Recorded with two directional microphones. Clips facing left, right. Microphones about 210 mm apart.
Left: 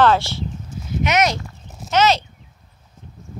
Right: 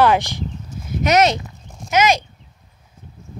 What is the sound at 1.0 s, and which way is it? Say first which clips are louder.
Speech: right 4 dB; 35° right (ahead or behind).